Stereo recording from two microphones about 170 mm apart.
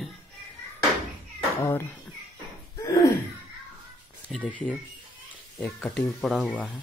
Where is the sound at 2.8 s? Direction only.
20° left (ahead or behind).